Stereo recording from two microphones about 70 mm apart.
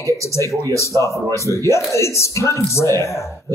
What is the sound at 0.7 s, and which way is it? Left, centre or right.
Speech, left.